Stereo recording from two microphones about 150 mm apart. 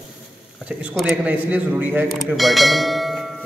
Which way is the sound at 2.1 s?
Centre (ahead or behind).